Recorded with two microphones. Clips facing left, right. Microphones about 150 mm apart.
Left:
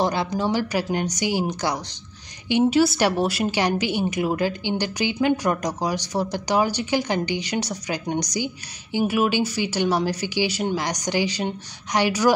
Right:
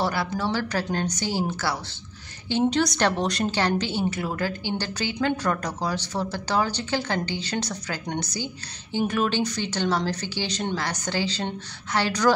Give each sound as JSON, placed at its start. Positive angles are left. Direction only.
{"t": 0.0, "sound": "a woman's voice", "side_deg": 20}